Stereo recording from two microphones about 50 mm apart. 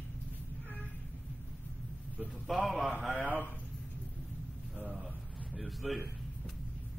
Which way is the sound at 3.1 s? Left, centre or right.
Right.